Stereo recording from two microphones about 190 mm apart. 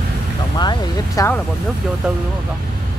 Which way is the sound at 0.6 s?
20° left (ahead or behind).